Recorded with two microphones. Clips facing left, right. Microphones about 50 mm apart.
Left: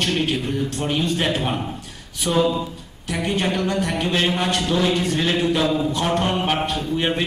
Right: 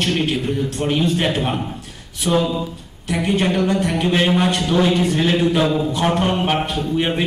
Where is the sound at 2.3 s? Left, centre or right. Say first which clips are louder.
Right 1 dB; centre.